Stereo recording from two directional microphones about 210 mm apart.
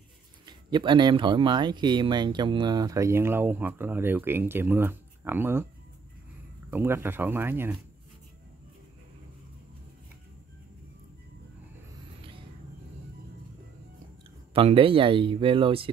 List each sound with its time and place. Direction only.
0.5 s speech: 20° right (ahead or behind)
6.7 s speech: 10° right (ahead or behind)
14.5 s speech: 25° right (ahead or behind)